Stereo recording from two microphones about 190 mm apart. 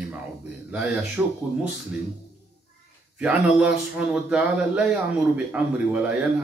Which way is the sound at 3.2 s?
5° right (ahead or behind).